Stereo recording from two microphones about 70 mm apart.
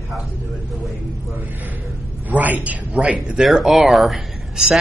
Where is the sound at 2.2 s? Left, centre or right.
Right.